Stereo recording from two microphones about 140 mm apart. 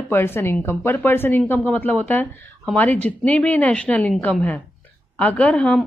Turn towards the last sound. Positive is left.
turn(degrees=5)  # may be behind; listen again after turning